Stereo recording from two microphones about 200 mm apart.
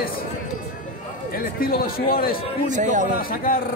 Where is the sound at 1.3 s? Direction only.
45° left (ahead or behind).